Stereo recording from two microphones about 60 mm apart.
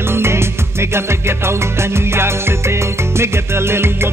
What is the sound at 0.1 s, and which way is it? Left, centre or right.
Music, right.